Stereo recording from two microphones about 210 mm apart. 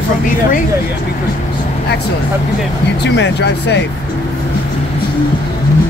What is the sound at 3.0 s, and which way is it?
Speech, 55° left (ahead or behind).